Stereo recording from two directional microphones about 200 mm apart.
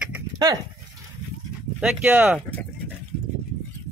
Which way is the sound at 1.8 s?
5° right (ahead or behind).